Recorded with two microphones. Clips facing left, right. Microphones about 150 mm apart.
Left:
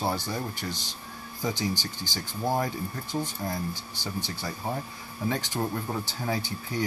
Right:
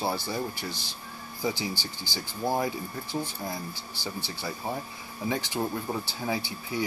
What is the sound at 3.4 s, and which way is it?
Speech, 15° right (ahead or behind).